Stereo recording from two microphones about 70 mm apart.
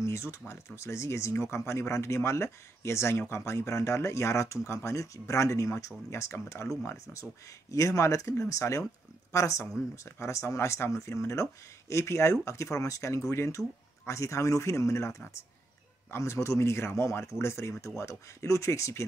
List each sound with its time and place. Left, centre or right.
0.0 s a sound: left
0.5 s speech: left
7.7 s speech: left